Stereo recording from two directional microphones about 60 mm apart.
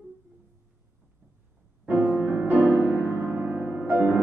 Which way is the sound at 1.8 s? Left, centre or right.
Right.